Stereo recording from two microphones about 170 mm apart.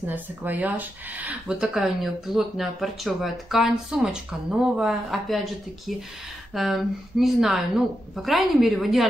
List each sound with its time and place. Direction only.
0.0 s speech: 10° right (ahead or behind)